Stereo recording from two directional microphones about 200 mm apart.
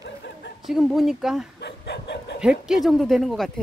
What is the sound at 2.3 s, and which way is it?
Speech, 5° right (ahead or behind).